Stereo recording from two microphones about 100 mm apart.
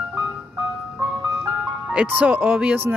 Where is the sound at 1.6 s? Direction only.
10° right (ahead or behind).